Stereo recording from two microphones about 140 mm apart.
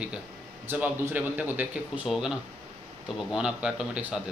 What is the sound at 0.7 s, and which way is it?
A man's voice, 15° right (ahead or behind).